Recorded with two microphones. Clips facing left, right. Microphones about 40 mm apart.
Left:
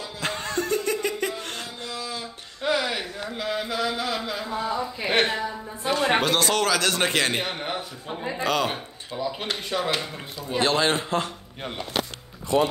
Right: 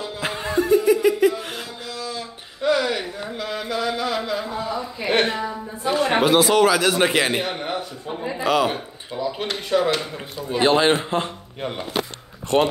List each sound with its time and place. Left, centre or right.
0.2 s music: centre
2.0 s a sound: centre
3.3 s a man's voice: centre
7.4 s a man's voice: centre
10.6 s speech: right
12.5 s speech: right